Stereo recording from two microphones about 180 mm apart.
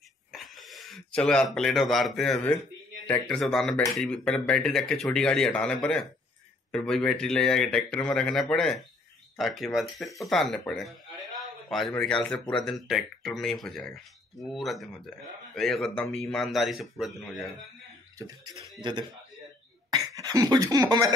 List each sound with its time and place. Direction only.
0.3 s speech: centre (ahead or behind)
18.1 s speech: 20° right (ahead or behind)